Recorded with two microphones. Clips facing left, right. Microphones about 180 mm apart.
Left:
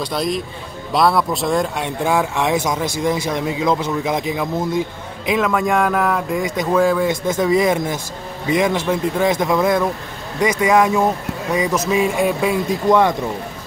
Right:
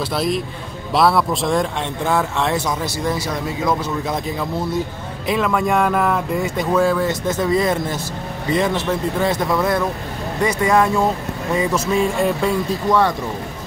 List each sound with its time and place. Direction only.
0.0 s speech: 5° right (ahead or behind)
2.0 s a man's voice: 10° left (ahead or behind)
5.4 s speech: centre (ahead or behind)
6.7 s a man's voice: 10° left (ahead or behind)